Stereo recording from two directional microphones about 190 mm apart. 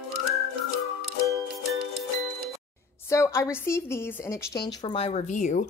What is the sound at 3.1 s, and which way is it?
A woman's voice, 15° left (ahead or behind).